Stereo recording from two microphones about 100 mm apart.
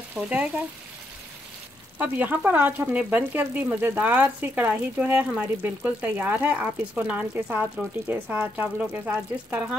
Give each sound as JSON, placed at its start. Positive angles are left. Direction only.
{"t": 0.1, "sound": "speech", "side_deg": -15}
{"t": 2.0, "sound": "speech", "side_deg": -15}